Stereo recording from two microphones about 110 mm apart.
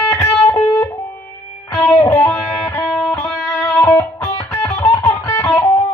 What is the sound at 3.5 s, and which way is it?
Music, 30° left (ahead or behind).